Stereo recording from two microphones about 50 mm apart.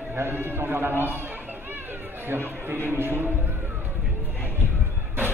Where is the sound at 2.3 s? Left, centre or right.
Right.